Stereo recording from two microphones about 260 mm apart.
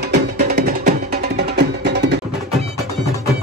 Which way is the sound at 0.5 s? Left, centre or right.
Right.